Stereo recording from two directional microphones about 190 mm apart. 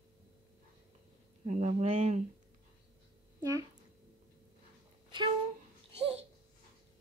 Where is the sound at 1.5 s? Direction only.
35° right (ahead or behind).